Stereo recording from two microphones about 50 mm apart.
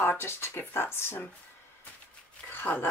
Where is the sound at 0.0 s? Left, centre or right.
Left.